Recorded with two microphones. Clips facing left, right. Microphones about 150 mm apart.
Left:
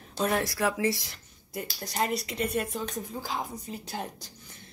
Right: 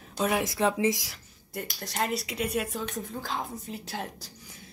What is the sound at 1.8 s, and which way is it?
A woman's voice, centre (ahead or behind).